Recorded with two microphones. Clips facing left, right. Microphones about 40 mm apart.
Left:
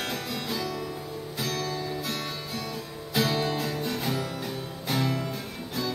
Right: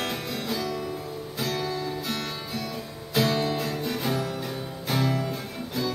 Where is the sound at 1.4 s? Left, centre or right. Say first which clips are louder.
Right 2 dB; centre.